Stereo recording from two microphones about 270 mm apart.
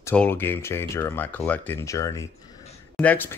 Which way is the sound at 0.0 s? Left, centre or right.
Centre.